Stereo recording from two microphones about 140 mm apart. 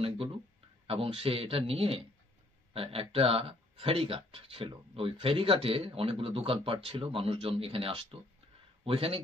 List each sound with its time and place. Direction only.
0.8 s speech: 45° right (ahead or behind)